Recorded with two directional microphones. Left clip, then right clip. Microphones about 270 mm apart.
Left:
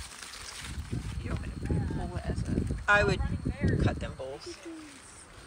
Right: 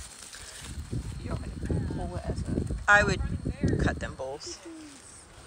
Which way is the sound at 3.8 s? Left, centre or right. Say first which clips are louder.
Right 2 dB; centre.